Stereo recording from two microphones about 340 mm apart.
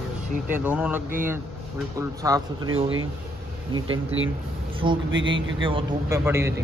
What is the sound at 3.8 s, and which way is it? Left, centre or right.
Speech, right.